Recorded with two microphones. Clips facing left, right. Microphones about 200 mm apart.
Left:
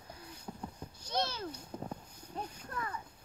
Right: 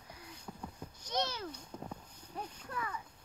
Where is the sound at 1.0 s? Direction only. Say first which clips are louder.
Left 1 dB; 15° right (ahead or behind).